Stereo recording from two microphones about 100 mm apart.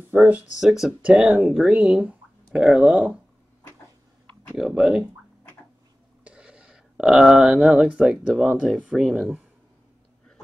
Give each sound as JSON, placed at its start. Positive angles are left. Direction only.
{"t": 0.0, "sound": "speech", "side_deg": -15}
{"t": 0.7, "sound": "speech", "side_deg": -5}
{"t": 4.6, "sound": "speech", "side_deg": -5}
{"t": 6.2, "sound": "a sound", "side_deg": -10}
{"t": 8.3, "sound": "speech", "side_deg": 0}